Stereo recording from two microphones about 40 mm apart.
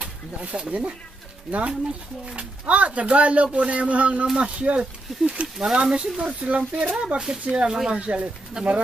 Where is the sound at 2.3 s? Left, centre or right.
Right.